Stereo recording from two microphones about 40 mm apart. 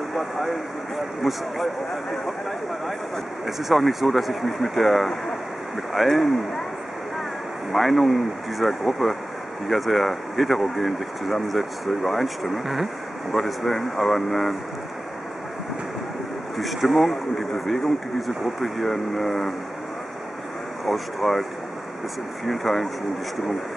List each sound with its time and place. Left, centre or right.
0.1 s vehicle: centre
3.4 s speech: centre
7.7 s speech: centre
16.5 s speech: centre
20.8 s speech: centre
22.5 s speech: centre